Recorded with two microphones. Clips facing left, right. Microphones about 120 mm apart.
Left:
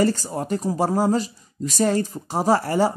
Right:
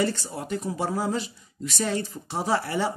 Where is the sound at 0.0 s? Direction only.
40° left (ahead or behind).